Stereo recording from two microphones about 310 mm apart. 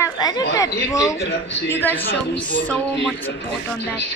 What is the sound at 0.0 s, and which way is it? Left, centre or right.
Chatter, centre.